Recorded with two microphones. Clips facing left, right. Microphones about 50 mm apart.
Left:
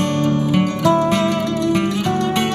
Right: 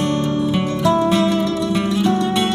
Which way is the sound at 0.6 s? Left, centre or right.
Left.